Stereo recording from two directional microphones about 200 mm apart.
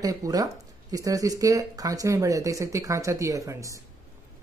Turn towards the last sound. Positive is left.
turn(degrees=-15)  # may be behind; listen again after turning